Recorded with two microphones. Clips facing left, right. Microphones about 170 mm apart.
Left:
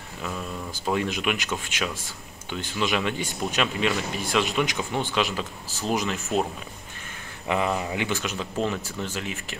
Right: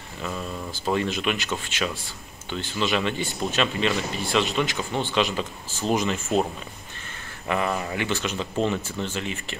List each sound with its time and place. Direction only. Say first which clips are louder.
0.2 s speech: right 1 dB; 5° left (ahead or behind)
5.1 s speech: right 2 dB; 5° left (ahead or behind)
7.4 s speech: even; 15° left (ahead or behind)
8.2 s speech: right 2 dB; 5° left (ahead or behind)